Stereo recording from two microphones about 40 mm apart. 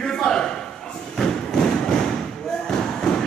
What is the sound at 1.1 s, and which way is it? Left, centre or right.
Thump, centre.